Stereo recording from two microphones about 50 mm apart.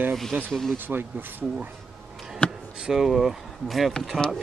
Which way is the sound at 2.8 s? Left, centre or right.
Centre.